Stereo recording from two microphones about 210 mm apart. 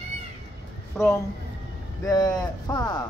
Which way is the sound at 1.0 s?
5° right (ahead or behind).